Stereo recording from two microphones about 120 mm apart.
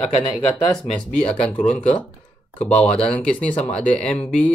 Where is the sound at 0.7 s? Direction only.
5° left (ahead or behind).